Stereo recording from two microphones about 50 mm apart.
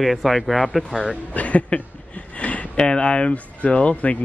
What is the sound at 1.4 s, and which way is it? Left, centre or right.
Speech, left.